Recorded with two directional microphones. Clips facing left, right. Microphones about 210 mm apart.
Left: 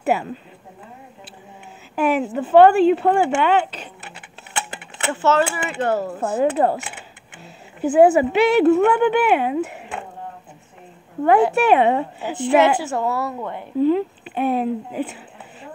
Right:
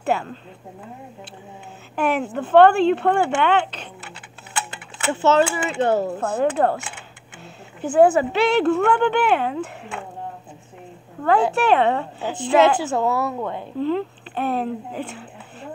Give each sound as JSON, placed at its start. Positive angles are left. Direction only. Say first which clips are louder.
{"t": 0.0, "sound": "speech", "louder": "left 2 dB", "side_deg": 10}
{"t": 2.0, "sound": "speech", "louder": "left 2 dB", "side_deg": 5}
{"t": 5.1, "sound": "speech", "louder": "right 1 dB", "side_deg": -20}
{"t": 6.1, "sound": "speech", "louder": "left 1 dB", "side_deg": 5}
{"t": 11.2, "sound": "speech", "louder": "left 3 dB", "side_deg": 15}